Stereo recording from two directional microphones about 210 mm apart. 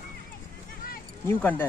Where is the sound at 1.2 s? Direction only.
10° left (ahead or behind).